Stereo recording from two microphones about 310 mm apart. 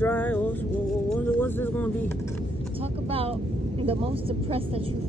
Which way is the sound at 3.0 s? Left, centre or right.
Centre.